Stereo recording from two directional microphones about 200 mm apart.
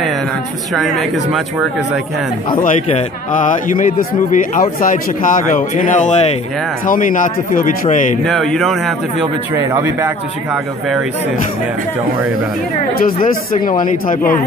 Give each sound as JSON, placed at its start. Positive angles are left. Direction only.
{"t": 0.7, "sound": "speech", "side_deg": 0}
{"t": 3.3, "sound": "a man's voice", "side_deg": 40}
{"t": 8.3, "sound": "speech", "side_deg": 0}
{"t": 9.2, "sound": "speech", "side_deg": -15}
{"t": 12.9, "sound": "speech", "side_deg": 45}